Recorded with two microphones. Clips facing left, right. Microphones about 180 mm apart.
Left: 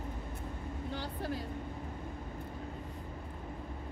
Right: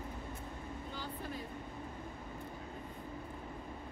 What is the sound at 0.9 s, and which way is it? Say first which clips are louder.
Vehicle: left 5 dB; 80° left.